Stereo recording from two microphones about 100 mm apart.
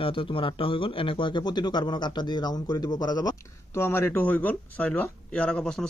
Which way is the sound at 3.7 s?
25° left (ahead or behind).